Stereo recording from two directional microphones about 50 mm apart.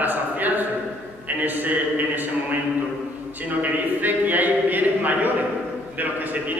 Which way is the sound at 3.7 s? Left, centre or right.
Right.